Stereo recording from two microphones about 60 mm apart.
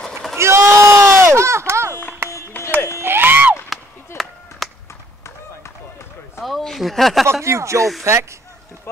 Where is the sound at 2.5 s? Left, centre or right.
Left.